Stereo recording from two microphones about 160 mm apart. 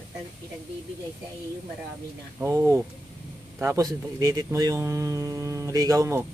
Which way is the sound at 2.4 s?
15° right (ahead or behind).